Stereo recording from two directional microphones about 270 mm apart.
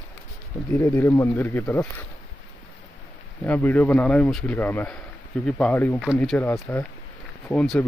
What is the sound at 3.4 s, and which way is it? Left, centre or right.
Speech, centre.